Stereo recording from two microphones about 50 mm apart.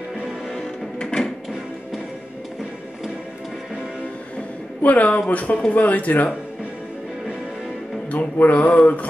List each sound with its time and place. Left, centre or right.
0.9 s music: centre
4.8 s mantra: left
5.7 s speech: left
8.1 s mantra: left